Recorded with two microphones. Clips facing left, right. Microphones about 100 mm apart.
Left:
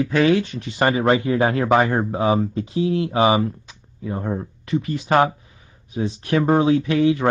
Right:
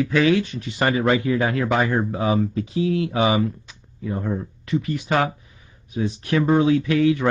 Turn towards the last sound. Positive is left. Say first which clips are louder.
# left 1 dB
turn(degrees=25)  # may be behind; listen again after turning